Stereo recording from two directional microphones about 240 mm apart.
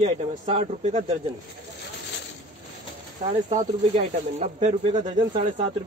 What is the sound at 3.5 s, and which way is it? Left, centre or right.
Speech, right.